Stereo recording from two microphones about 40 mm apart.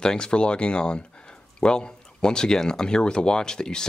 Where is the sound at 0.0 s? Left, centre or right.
Left.